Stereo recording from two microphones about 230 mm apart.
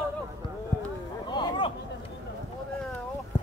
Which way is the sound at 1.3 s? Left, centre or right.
Left.